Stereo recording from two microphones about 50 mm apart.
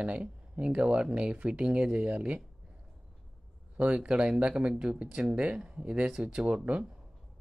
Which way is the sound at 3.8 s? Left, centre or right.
Right.